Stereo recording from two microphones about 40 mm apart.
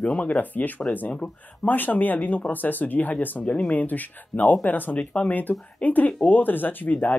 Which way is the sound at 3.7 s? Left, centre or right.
Left.